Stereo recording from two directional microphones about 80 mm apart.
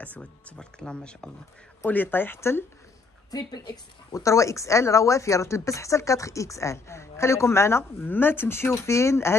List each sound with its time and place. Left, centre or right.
0.0 s speech: centre
1.9 s speech: left
3.3 s a woman's voice: left